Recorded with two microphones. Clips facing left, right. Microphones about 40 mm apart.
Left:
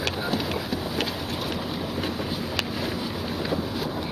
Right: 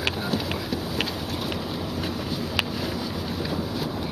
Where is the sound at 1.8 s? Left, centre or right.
Centre.